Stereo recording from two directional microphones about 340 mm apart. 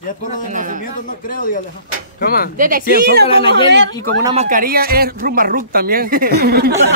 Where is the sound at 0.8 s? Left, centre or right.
Left.